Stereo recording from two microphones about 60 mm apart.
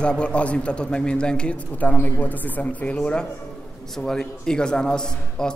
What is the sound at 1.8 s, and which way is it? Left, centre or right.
Speech, left.